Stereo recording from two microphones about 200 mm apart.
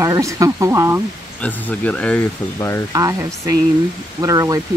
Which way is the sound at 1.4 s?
10° left (ahead or behind).